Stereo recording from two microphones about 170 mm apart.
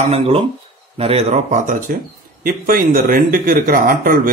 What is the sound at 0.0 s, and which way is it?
A man's voice, 40° right (ahead or behind).